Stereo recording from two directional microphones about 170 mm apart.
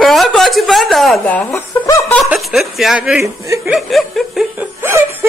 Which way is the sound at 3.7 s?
Centre (ahead or behind).